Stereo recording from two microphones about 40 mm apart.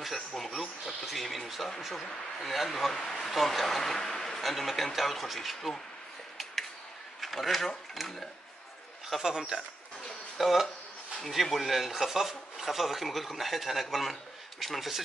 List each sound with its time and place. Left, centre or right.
0.0 s speech: centre
3.0 s speech: centre
3.3 s speech: centre
7.2 s speech: centre
9.2 s speech: centre
10.3 s speech: centre